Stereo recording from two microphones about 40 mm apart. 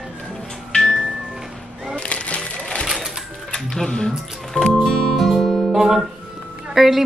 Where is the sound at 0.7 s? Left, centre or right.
Left.